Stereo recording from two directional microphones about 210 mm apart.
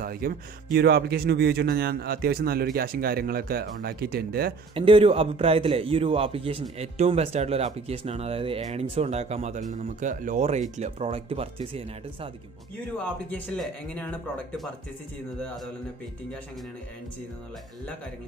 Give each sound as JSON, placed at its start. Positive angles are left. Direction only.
{"t": 0.0, "sound": "speech", "side_deg": -45}
{"t": 4.7, "sound": "a man's voice", "side_deg": -25}
{"t": 13.3, "sound": "speech", "side_deg": 5}